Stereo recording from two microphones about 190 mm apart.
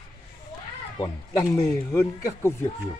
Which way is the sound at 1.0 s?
20° left (ahead or behind).